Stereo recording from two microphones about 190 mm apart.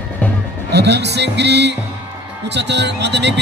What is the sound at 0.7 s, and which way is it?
A man's voice, 60° right (ahead or behind).